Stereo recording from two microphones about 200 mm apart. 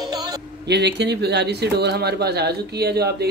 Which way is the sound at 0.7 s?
60° right (ahead or behind).